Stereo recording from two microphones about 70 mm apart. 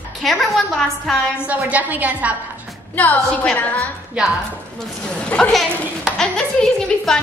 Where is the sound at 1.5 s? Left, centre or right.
Right.